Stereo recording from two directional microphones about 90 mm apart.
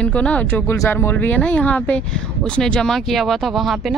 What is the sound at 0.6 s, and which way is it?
Speech, 30° left (ahead or behind).